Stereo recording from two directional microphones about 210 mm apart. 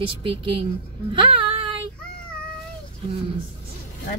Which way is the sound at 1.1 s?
25° right (ahead or behind).